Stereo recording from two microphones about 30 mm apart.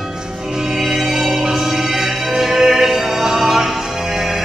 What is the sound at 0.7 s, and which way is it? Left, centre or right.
Music, centre.